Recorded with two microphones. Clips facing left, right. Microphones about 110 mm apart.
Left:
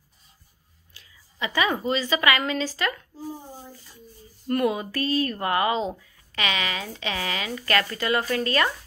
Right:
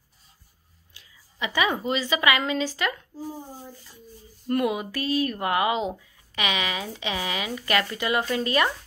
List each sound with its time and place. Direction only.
0.9 s a woman's voice: 15° right (ahead or behind)
4.5 s speech: 15° right (ahead or behind)